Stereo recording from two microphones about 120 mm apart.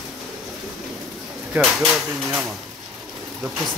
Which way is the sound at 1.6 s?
Centre (ahead or behind).